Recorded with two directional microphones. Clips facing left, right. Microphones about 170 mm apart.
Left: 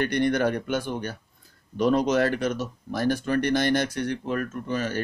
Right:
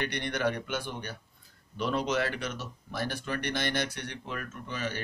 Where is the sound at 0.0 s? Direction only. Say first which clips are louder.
Left 8 dB; 45° left (ahead or behind).